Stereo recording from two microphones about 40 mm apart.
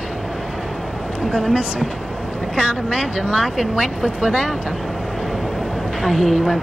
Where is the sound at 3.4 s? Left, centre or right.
Centre.